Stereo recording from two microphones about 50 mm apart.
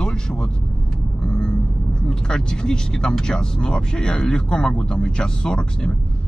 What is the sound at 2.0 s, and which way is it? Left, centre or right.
Speech, centre.